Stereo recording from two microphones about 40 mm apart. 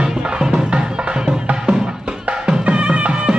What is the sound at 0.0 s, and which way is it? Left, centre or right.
Music, right.